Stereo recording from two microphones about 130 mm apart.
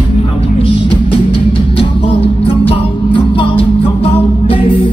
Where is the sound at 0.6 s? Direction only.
45° left (ahead or behind).